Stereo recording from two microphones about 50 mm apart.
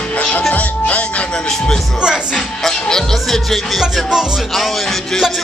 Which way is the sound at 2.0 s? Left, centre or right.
Centre.